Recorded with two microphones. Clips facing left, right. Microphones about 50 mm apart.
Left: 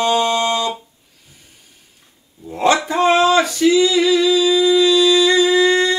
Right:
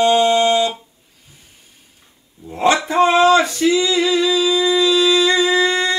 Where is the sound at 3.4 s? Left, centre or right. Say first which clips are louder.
Left 2 dB; right.